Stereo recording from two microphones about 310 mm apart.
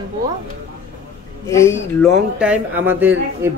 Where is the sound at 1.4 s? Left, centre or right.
Centre.